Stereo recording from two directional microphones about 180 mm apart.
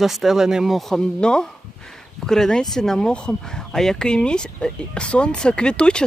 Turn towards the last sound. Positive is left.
turn(degrees=5)  # may be behind; listen again after turning